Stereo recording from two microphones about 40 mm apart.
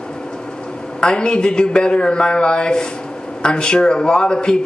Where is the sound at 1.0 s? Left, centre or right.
Left.